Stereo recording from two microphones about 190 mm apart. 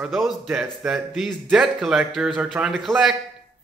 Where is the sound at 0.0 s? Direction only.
Centre (ahead or behind).